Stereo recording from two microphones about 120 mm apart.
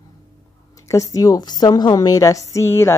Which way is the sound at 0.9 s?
30° left (ahead or behind).